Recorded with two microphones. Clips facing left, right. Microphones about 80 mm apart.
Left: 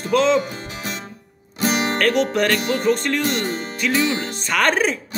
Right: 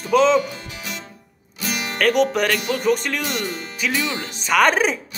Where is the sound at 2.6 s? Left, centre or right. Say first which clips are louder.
Left 2 dB; left.